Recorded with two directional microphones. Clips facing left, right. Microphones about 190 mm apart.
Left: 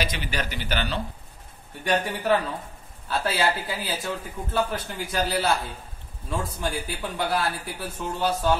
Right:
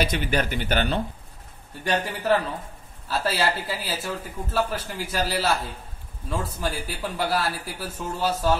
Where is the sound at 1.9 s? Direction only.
Centre (ahead or behind).